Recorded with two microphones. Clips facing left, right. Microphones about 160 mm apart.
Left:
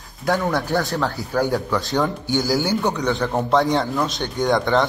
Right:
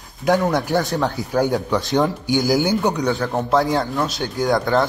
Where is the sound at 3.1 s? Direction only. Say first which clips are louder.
Even; centre (ahead or behind).